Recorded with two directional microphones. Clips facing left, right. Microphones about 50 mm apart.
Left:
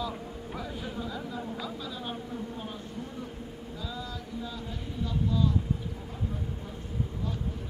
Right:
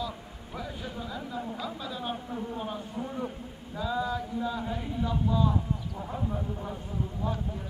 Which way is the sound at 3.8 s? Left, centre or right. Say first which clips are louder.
Right 11 dB; centre.